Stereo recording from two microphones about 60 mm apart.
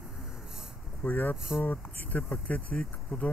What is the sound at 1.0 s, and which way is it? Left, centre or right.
Speech, left.